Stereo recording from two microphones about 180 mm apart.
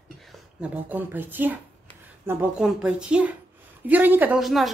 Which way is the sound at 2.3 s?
5° right (ahead or behind).